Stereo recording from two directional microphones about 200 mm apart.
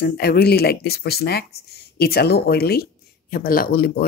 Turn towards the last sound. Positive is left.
turn(degrees=45)  # may be behind; listen again after turning